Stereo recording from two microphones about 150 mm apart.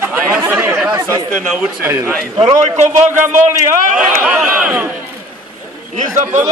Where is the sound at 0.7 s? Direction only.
20° right (ahead or behind).